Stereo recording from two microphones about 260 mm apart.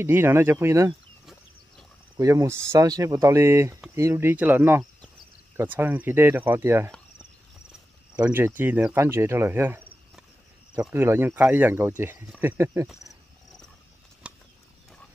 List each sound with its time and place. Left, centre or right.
0.0 s speech: centre
8.2 s speech: centre
14.2 s bird flight: centre